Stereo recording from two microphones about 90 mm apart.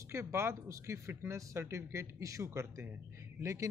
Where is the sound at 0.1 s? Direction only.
30° right (ahead or behind).